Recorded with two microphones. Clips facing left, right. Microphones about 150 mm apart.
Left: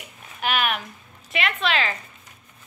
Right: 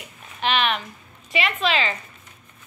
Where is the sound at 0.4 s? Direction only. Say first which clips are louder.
Right 2 dB; 5° left (ahead or behind).